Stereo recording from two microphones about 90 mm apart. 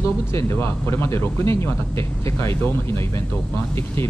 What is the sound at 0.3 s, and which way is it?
Speech, 30° left (ahead or behind).